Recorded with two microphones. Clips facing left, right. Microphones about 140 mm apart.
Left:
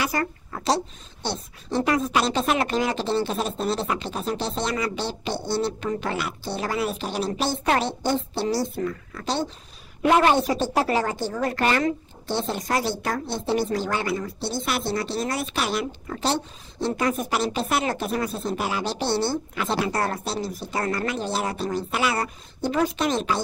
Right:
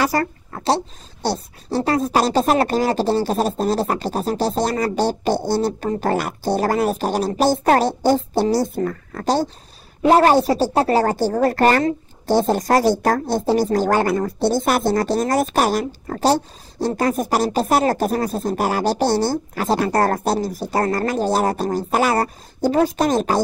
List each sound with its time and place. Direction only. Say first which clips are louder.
0.0 s a woman's voice: right 6 dB; 40° right (ahead or behind)